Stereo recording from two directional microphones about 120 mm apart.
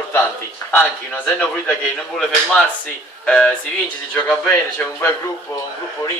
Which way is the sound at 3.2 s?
10° left (ahead or behind).